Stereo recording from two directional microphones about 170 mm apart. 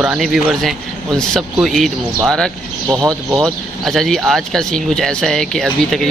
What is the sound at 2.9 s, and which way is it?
Speech, 20° right (ahead or behind).